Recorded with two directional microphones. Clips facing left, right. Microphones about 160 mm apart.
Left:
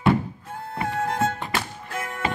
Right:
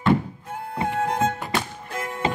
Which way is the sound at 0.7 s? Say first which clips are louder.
Right 1 dB; 15° right (ahead or behind).